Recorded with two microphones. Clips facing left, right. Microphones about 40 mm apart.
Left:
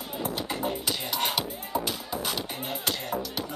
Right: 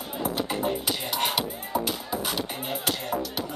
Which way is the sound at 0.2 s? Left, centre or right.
Centre.